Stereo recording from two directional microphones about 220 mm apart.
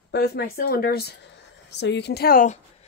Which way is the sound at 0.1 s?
45° left (ahead or behind).